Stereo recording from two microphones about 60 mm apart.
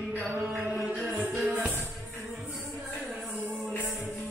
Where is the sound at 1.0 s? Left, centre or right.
Centre.